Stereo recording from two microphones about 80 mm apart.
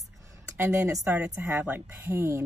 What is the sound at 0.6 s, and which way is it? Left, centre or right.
Speech, right.